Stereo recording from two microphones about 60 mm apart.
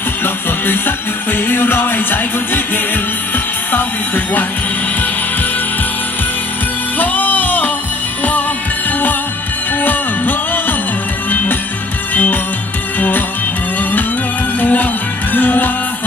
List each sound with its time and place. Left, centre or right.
0.2 s music: left
7.0 s music: left
9.8 s music: left
14.6 s music: left